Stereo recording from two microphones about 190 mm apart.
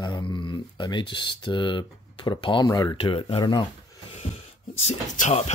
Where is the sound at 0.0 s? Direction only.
25° left (ahead or behind).